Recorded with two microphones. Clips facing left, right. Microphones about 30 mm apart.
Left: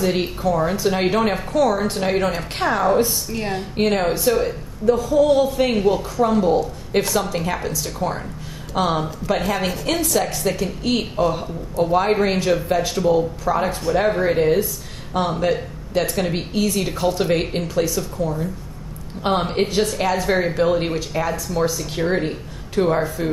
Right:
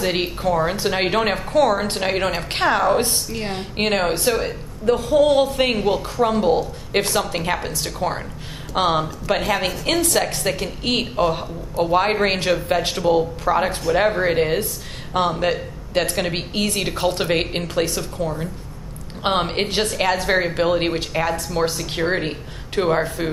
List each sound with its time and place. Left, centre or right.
0.0 s speech: right
5.8 s speech: right
6.1 s speech: right
11.2 s speech: right
19.4 s speech: right
21.6 s speech: right
22.0 s speech: right